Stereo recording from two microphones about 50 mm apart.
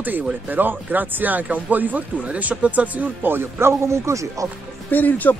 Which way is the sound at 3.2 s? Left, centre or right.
Right.